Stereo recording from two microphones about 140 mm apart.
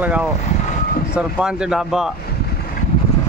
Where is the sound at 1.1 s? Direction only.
5° right (ahead or behind).